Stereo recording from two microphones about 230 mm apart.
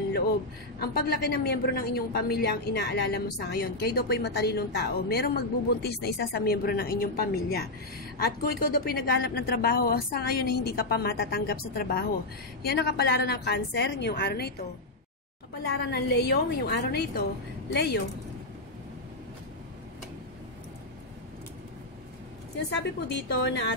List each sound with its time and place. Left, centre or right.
0.7 s a woman's voice: left
15.6 s a woman's voice: left
23.0 s a woman's voice: left